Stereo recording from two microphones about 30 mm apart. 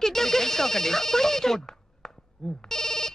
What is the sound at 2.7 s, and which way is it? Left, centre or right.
Telephone bell ringing, centre.